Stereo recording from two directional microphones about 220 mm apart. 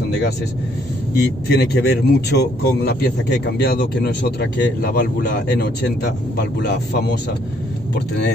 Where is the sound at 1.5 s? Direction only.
50° left (ahead or behind).